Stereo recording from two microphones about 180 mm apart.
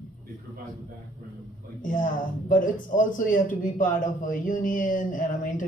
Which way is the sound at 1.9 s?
50° left (ahead or behind).